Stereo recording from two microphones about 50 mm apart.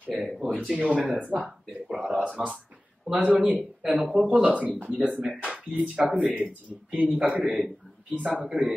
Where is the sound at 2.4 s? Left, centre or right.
Right.